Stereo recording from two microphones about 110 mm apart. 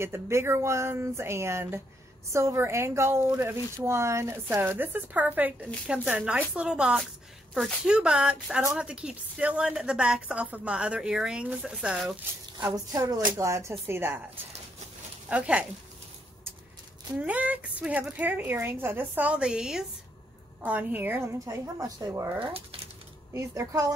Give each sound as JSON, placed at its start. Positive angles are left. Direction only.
{"t": 0.0, "sound": "a woman's voice", "side_deg": -25}
{"t": 12.7, "sound": "a woman's voice", "side_deg": -35}
{"t": 17.2, "sound": "a woman's voice", "side_deg": -15}
{"t": 22.4, "sound": "speech", "side_deg": -60}
{"t": 23.3, "sound": "a woman's voice", "side_deg": -30}